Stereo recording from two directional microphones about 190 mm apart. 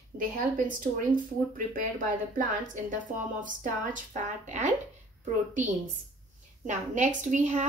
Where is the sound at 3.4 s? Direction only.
45° right (ahead or behind).